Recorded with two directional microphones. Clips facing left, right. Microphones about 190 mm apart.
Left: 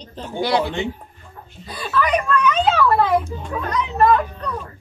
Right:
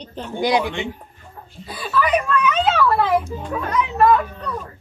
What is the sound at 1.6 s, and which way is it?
A child's voice, 5° right (ahead or behind).